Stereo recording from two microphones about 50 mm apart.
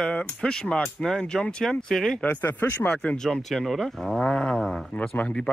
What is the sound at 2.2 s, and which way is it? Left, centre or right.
Speech, left.